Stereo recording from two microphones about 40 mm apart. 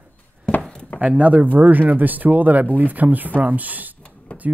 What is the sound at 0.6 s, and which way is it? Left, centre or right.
Chopping, centre.